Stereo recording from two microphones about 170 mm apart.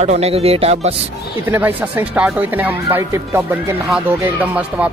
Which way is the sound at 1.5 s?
10° right (ahead or behind).